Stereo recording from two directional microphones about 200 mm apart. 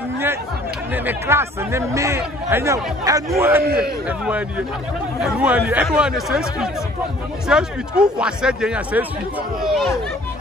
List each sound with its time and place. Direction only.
0.9 s speech: 10° right (ahead or behind)
3.6 s a man's voice: 50° right (ahead or behind)
5.2 s speech: 5° right (ahead or behind)